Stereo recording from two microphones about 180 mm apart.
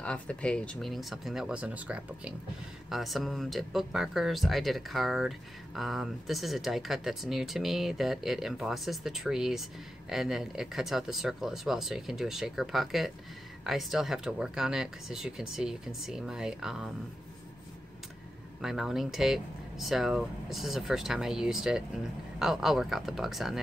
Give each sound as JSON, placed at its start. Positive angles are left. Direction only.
{"t": 0.0, "sound": "speech", "side_deg": 5}
{"t": 18.6, "sound": "speech", "side_deg": 0}